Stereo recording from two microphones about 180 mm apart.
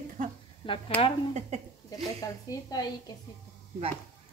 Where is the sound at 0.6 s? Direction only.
30° left (ahead or behind).